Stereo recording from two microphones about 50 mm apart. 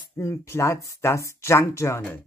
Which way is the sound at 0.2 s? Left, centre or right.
Left.